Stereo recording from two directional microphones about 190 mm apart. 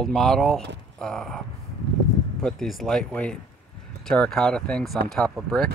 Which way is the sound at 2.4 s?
Centre (ahead or behind).